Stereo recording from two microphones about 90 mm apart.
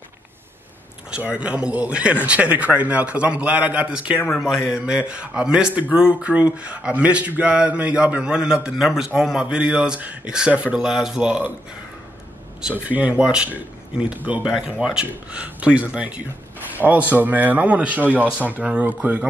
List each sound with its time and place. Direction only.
1.1 s a man's voice: 10° right (ahead or behind)
4.3 s a man's voice: centre (ahead or behind); by 11.5 s 15° right (ahead or behind)
12.6 s a man's voice: 15° right (ahead or behind)